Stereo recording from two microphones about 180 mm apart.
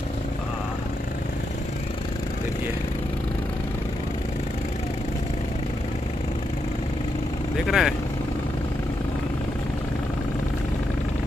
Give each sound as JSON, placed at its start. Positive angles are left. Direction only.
{"t": 7.5, "sound": "speech", "side_deg": 0}